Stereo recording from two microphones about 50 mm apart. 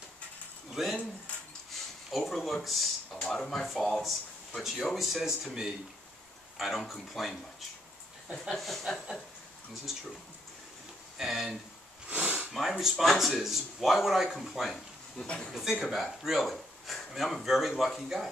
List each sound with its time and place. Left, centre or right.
0.7 s speech: centre
8.5 s speech: centre
11.1 s speech: centre
12.1 s a sound: right
12.7 s speech: centre
13.0 s speech: centre
15.2 s speech: centre
15.5 s speech: centre